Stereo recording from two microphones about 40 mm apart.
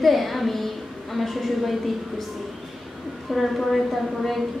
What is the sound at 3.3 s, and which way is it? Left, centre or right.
A woman's voice, centre.